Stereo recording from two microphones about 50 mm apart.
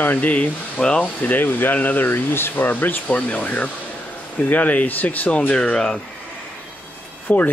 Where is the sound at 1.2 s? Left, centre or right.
Left.